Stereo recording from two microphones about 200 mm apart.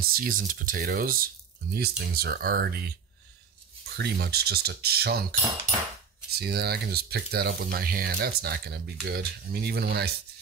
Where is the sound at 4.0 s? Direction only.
50° right (ahead or behind).